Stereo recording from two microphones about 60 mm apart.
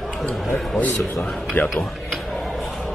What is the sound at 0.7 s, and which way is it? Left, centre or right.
Speech, left.